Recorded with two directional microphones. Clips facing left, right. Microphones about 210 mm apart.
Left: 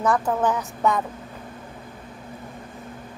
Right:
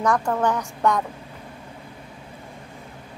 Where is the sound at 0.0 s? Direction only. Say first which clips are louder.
Even; 5° left (ahead or behind).